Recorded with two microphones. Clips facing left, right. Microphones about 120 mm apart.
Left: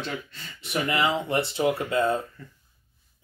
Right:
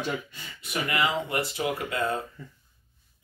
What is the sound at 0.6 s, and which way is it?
Speech, 25° left (ahead or behind).